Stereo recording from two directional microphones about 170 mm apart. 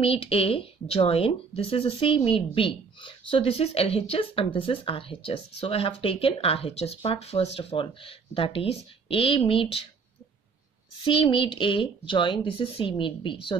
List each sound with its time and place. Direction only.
0.0 s speech: 35° left (ahead or behind)
11.1 s speech: 30° left (ahead or behind)